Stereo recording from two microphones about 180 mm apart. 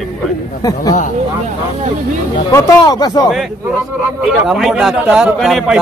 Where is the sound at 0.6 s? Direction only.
20° left (ahead or behind).